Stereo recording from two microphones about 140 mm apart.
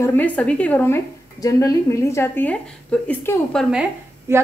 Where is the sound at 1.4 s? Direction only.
25° left (ahead or behind).